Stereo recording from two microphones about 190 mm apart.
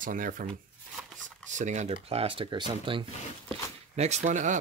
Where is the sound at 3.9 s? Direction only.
35° right (ahead or behind).